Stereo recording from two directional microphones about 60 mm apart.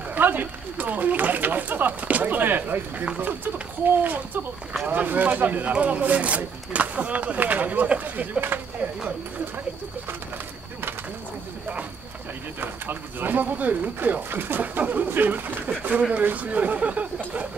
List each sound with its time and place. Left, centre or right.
0.1 s speech: right
12.5 s speech: right